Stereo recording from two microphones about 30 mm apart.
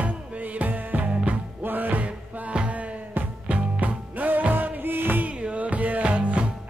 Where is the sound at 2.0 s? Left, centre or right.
Right.